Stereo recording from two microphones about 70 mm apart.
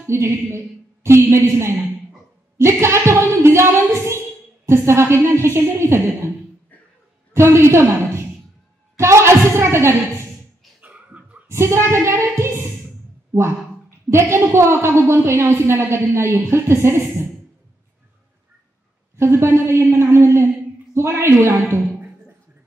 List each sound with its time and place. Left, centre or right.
0.0 s speech: right
2.5 s a sound: right
4.6 s a woman's voice: right
7.3 s a woman's voice: right
10.8 s a sound: right
11.4 s child singing: right
13.8 s a woman's voice: right
19.1 s a woman's voice: right